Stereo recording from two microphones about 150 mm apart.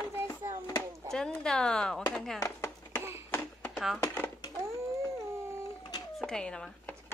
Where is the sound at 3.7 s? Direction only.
Centre (ahead or behind).